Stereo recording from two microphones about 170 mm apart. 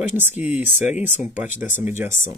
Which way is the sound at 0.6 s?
10° right (ahead or behind).